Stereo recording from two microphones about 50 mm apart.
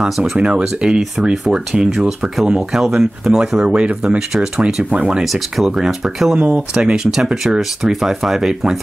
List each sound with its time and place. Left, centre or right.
0.4 s speech: centre
4.3 s speech: centre
5.2 s speech: centre
6.3 s speech: right